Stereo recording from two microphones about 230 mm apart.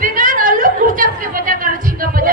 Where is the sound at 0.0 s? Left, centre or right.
Right.